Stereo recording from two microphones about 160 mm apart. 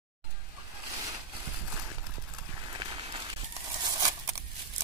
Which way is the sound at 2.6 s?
30° right (ahead or behind).